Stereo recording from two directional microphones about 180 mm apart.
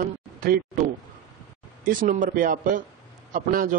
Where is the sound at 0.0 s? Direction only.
50° right (ahead or behind).